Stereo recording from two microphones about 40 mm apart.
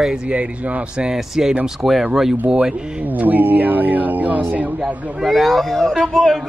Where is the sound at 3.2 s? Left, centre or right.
Right.